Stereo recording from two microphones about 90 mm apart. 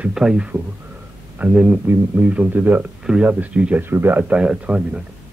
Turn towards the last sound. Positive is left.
turn(degrees=-10)  # may be behind; listen again after turning